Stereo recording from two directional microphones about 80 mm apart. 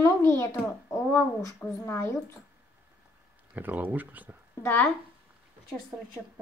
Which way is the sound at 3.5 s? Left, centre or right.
Right.